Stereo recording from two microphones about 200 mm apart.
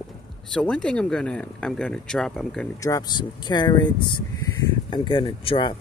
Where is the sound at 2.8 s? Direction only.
20° left (ahead or behind).